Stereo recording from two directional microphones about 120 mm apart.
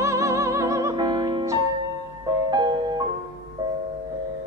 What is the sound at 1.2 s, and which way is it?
Music, 30° right (ahead or behind).